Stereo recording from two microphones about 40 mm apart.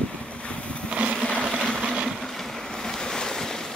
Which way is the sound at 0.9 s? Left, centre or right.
Right.